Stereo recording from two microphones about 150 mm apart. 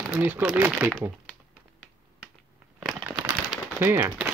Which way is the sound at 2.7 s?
5° right (ahead or behind).